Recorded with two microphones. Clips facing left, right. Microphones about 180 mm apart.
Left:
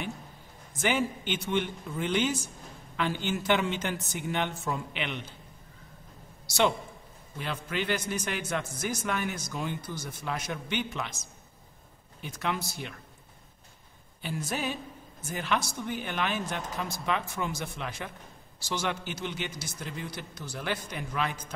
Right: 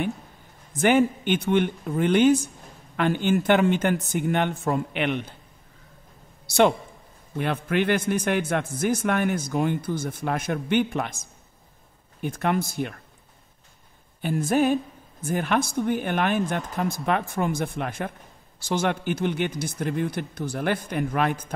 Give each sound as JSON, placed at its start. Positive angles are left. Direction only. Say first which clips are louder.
{"t": 0.7, "sound": "a man's voice", "louder": "right 9 dB", "side_deg": -55}
{"t": 6.4, "sound": "a man's voice", "louder": "right 7 dB", "side_deg": -55}
{"t": 14.2, "sound": "a man's voice", "louder": "right 11 dB", "side_deg": -50}